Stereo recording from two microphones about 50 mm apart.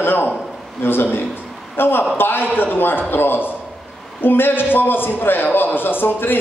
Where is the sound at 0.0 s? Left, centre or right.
Left.